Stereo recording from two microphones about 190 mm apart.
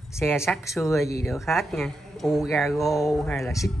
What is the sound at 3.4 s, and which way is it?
Speech, 15° left (ahead or behind).